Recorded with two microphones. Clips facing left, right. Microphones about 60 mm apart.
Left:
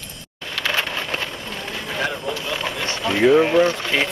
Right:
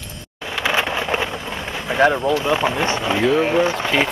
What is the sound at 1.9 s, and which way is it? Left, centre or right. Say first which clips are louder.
Speech: right 10 dB; right.